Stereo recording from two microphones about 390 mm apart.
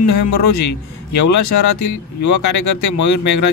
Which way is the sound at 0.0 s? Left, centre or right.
Left.